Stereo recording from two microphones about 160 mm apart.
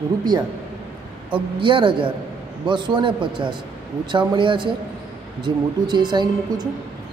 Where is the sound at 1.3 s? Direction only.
30° right (ahead or behind).